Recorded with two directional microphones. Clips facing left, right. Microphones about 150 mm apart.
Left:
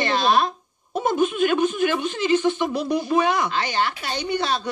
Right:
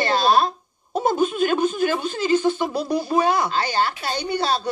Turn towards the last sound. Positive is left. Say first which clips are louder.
# right 1 dB
turn(degrees=-35)  # may be behind; listen again after turning